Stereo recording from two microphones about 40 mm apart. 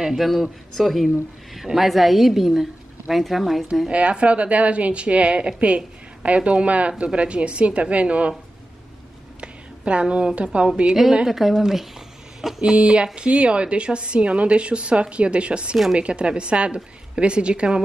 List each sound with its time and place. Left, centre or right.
0.1 s speech: centre
3.9 s a woman's voice: right
6.9 s speech: centre
7.2 s speech: right
9.4 s speech: right
10.9 s speech: centre
12.4 s a sound: centre
12.6 s speech: right